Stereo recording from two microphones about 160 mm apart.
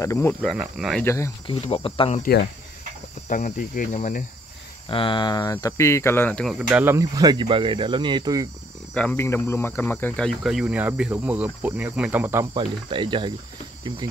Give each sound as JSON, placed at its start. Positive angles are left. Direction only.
{"t": 0.0, "sound": "speech", "side_deg": 20}
{"t": 0.3, "sound": "speech", "side_deg": 5}
{"t": 1.0, "sound": "speech", "side_deg": 20}
{"t": 1.5, "sound": "speech", "side_deg": 35}
{"t": 3.3, "sound": "speech", "side_deg": 50}
{"t": 4.8, "sound": "speech", "side_deg": 35}
{"t": 6.8, "sound": "speech", "side_deg": -20}
{"t": 8.9, "sound": "speech", "side_deg": 10}
{"t": 12.5, "sound": "speech", "side_deg": -30}